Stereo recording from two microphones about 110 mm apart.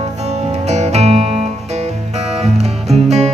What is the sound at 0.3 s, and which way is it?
Music, 85° right.